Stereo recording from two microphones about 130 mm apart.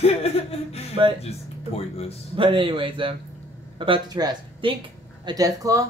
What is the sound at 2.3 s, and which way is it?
Speech, 40° right (ahead or behind).